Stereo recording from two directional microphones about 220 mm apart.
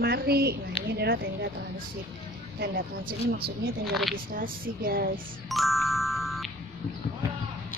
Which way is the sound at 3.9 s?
Centre (ahead or behind).